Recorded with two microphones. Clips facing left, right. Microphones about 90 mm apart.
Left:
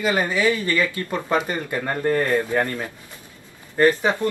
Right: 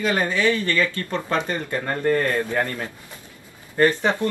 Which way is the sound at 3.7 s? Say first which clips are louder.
Left 1 dB; 10° left (ahead or behind).